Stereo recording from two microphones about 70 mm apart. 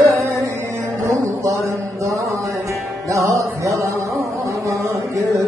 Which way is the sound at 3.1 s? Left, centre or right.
Right.